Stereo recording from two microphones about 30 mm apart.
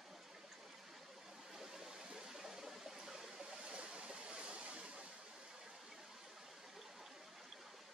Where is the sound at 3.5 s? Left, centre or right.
Right.